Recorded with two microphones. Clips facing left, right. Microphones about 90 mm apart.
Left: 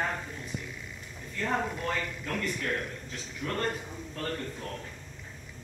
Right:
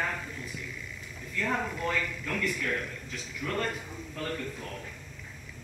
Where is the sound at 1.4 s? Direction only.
25° left (ahead or behind).